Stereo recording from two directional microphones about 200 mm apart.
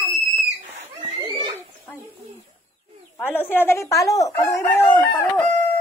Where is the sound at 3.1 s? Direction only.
10° left (ahead or behind).